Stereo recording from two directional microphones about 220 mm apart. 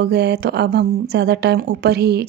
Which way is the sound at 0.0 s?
50° right (ahead or behind).